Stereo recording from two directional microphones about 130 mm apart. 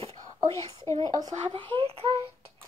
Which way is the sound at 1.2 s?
40° right (ahead or behind).